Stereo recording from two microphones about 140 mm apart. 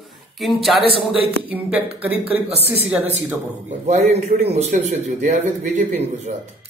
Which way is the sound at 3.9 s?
50° right (ahead or behind).